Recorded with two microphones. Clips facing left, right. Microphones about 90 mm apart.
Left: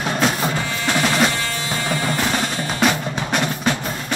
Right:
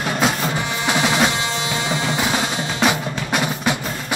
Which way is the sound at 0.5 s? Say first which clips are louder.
Right 1 dB; 20° right (ahead or behind).